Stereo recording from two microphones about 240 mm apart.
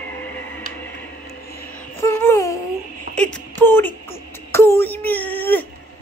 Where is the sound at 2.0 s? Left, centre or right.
Centre.